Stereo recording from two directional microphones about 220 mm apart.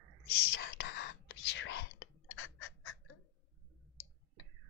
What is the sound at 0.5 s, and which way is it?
Whispering, 50° left (ahead or behind).